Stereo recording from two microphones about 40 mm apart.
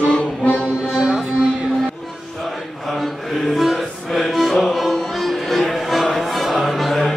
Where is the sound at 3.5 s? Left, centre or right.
Centre.